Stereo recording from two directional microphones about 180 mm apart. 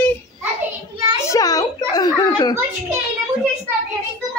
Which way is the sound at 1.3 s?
20° left (ahead or behind).